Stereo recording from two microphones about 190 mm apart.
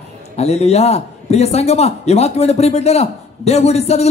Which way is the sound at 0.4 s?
35° left (ahead or behind).